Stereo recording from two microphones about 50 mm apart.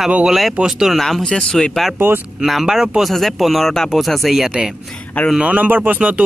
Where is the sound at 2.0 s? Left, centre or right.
Right.